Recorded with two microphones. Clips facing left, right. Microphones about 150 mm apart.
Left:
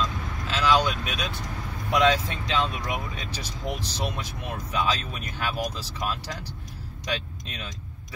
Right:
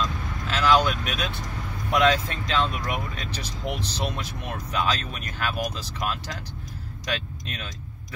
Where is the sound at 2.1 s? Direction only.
15° left (ahead or behind).